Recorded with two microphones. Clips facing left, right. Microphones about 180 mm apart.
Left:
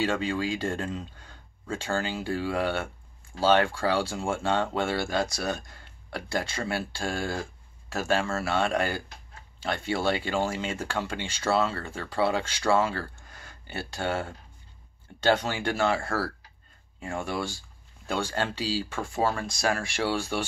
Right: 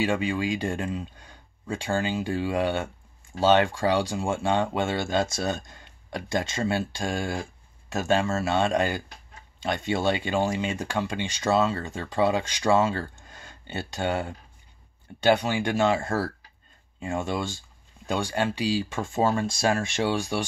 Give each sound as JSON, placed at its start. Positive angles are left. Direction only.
{"t": 0.0, "sound": "speech", "side_deg": -15}